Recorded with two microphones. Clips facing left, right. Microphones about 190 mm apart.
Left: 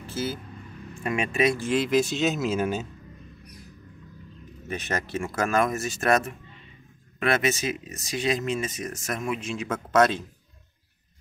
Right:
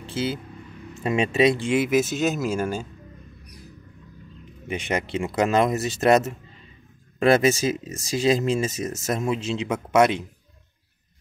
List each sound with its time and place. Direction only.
1.0 s speech: 25° right (ahead or behind)
1.8 s speech: 5° right (ahead or behind)
4.6 s speech: 15° right (ahead or behind)
9.7 s speech: 15° right (ahead or behind)